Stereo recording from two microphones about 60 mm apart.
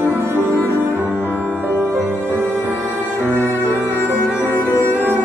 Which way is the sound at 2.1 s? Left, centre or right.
Right.